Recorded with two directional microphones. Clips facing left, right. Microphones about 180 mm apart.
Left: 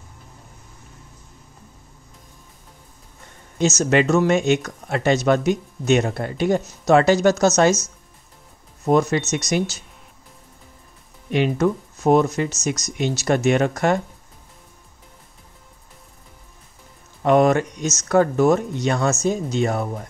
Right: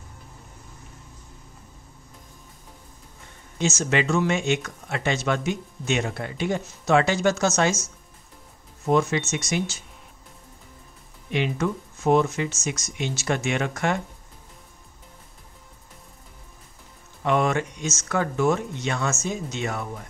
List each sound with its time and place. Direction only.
3.5 s speech: 40° left (ahead or behind)
11.3 s speech: 40° left (ahead or behind)
17.2 s speech: 40° left (ahead or behind)